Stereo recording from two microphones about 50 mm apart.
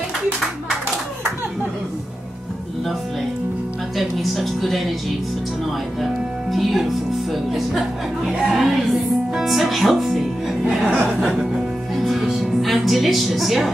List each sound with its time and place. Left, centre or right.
3.9 s speech: centre
6.5 s speech: centre
10.6 s music: centre
11.1 s speech: centre
11.9 s music: centre